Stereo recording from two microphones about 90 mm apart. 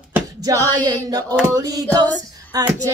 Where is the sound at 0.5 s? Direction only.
45° right (ahead or behind).